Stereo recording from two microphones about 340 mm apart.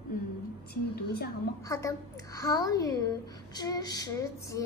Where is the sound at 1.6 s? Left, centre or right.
Centre.